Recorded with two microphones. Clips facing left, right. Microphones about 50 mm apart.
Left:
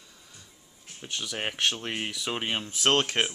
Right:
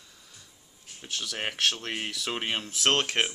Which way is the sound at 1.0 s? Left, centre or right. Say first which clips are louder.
Left 1 dB; centre.